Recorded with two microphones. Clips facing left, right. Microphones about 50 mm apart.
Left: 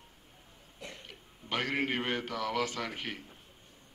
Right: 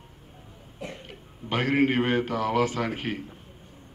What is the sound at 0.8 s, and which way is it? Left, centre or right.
A man's voice, right.